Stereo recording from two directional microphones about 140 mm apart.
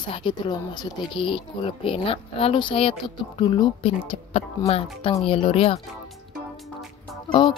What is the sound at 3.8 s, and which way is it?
A woman's voice, 45° left (ahead or behind).